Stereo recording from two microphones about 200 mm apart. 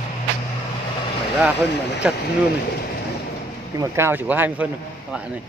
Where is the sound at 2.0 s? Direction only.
5° right (ahead or behind).